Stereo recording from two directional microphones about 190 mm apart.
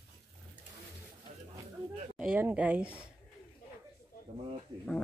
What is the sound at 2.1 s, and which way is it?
Speech, 5° right (ahead or behind).